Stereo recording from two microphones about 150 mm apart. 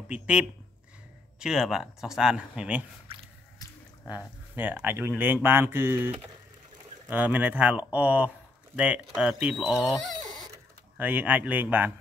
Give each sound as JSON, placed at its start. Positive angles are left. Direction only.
{"t": 0.1, "sound": "speech", "side_deg": -10}
{"t": 3.1, "sound": "squish", "side_deg": -40}
{"t": 4.6, "sound": "speech", "side_deg": -10}
{"t": 11.0, "sound": "speech", "side_deg": -10}